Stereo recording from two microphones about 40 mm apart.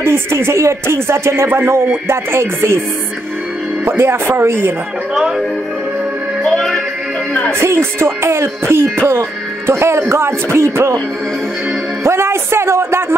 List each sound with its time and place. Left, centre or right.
0.0 s music: right
1.6 s music: right
3.8 s music: right
6.4 s music: centre
7.5 s music: right
12.0 s music: right